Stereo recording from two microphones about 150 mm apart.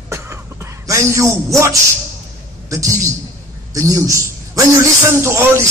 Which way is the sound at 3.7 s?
20° right (ahead or behind).